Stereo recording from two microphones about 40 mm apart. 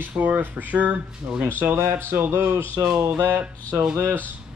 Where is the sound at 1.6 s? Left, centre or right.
Right.